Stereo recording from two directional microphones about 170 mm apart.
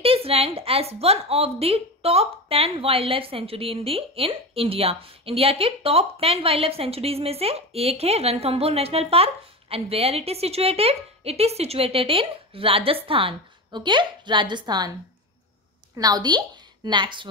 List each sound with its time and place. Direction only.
0.0 s a woman's voice: 35° right (ahead or behind)
16.0 s a woman's voice: 25° right (ahead or behind)